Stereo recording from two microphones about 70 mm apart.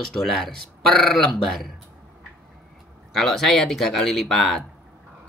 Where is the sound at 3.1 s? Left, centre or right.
Centre.